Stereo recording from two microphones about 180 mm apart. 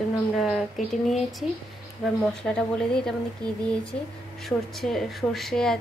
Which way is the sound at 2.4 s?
5° left (ahead or behind).